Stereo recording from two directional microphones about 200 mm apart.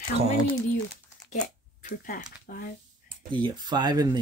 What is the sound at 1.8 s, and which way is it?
Speech, 40° left (ahead or behind).